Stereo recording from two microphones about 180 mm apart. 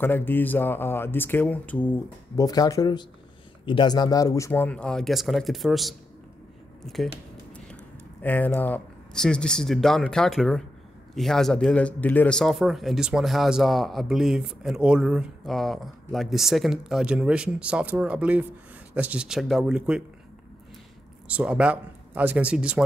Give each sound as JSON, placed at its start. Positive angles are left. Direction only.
{"t": 0.0, "sound": "speech", "side_deg": 10}
{"t": 2.3, "sound": "speech", "side_deg": 20}
{"t": 8.2, "sound": "speech", "side_deg": 10}
{"t": 21.3, "sound": "speech", "side_deg": -5}